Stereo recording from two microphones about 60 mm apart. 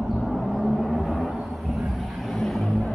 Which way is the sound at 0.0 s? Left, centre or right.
Centre.